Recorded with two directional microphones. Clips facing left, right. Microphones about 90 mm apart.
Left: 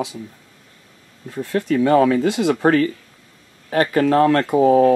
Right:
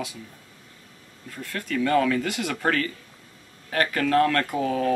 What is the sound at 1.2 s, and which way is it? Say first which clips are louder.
Speech: left 12 dB; 25° left (ahead or behind).